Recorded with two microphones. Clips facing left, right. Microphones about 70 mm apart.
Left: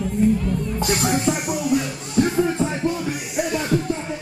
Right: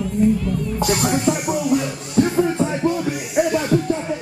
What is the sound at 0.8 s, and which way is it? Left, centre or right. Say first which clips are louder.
Music: right 2 dB; right.